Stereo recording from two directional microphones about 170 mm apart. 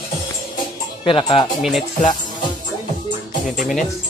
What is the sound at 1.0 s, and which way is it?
Speech, 30° left (ahead or behind).